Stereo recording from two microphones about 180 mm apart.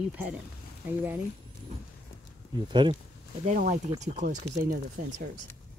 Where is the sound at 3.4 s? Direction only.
45° right (ahead or behind).